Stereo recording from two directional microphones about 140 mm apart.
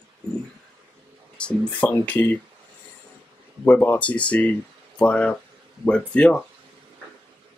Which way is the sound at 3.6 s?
15° left (ahead or behind).